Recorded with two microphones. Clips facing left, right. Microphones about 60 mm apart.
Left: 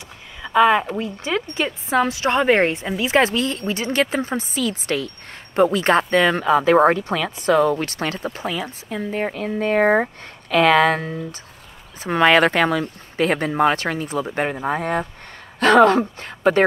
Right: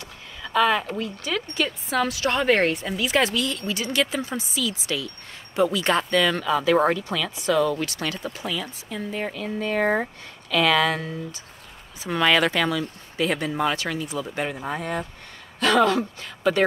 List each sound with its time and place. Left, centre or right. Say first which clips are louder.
0.4 s a woman's voice: left 5 dB; left